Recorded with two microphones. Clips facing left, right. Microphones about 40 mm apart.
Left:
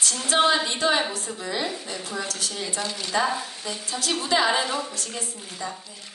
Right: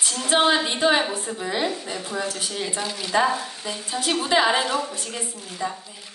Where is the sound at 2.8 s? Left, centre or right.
Centre.